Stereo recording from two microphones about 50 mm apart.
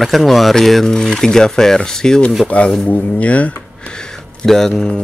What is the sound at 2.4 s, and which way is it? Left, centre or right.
Speech, left.